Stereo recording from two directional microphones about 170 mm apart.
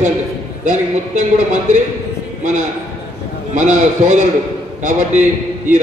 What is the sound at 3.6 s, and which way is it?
A man's voice, 45° right (ahead or behind).